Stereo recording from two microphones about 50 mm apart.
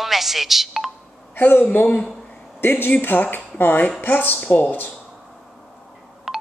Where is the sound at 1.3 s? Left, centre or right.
Left.